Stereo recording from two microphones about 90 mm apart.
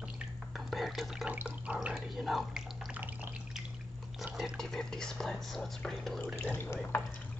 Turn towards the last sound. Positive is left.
turn(degrees=25)  # may be behind; listen again after turning